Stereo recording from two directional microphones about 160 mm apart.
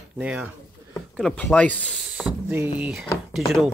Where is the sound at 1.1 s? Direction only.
5° left (ahead or behind).